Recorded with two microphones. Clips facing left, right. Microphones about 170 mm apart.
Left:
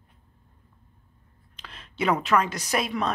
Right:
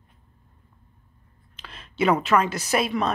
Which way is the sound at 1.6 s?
5° right (ahead or behind).